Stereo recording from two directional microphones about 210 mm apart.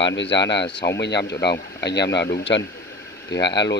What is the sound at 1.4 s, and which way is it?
Speech, 55° left (ahead or behind).